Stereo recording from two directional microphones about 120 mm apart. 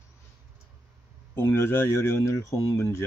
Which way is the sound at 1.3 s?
20° left (ahead or behind).